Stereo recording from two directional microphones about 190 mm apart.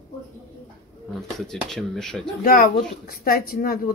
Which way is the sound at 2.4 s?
50° left (ahead or behind).